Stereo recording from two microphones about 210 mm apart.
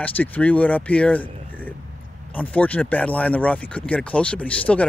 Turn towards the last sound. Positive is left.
turn(degrees=5)  # may be behind; listen again after turning